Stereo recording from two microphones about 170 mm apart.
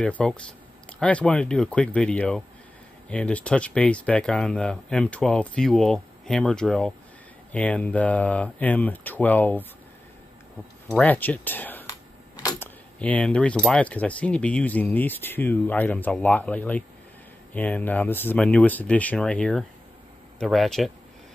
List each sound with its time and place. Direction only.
0.0 s speech: 5° left (ahead or behind)
10.9 s speech: 10° left (ahead or behind)
12.4 s keys jangling: 10° left (ahead or behind)
13.7 s speech: 5° left (ahead or behind)